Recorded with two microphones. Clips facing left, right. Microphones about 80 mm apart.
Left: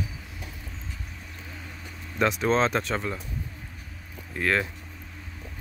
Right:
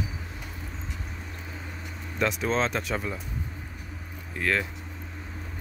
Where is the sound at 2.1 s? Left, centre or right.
Centre.